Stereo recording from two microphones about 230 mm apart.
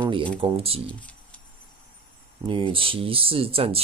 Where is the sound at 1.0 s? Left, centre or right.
Centre.